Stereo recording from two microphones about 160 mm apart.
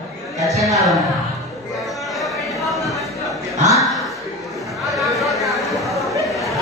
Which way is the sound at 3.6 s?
20° right (ahead or behind).